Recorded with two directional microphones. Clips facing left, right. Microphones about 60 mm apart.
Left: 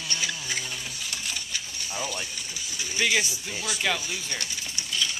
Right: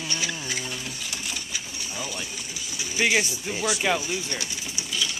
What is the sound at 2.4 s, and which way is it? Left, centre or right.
Sewing machine, centre.